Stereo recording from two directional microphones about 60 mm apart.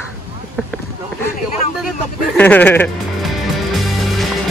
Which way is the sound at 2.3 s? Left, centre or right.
Left.